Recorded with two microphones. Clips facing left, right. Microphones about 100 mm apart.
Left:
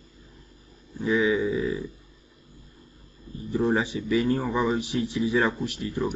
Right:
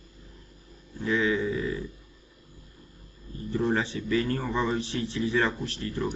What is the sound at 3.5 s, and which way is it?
Speech, 15° left (ahead or behind).